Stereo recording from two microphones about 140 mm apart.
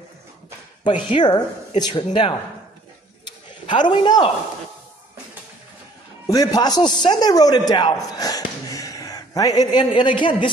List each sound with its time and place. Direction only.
0.8 s speech: 35° left (ahead or behind)
3.3 s a sound: 35° left (ahead or behind)
6.2 s a man's voice: 25° left (ahead or behind)